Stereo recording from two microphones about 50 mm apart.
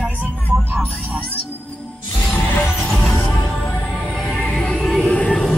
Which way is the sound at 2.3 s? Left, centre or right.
Left.